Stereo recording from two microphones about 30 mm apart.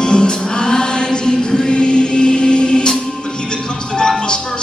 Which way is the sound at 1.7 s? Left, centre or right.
Left.